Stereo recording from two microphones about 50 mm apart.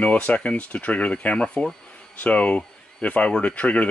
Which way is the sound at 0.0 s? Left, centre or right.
Left.